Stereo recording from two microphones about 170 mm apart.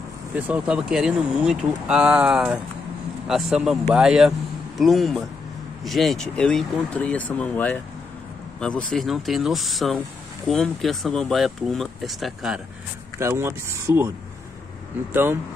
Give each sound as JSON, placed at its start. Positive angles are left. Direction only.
{"t": 0.4, "sound": "a man's voice", "side_deg": -5}
{"t": 13.2, "sound": "speech", "side_deg": -15}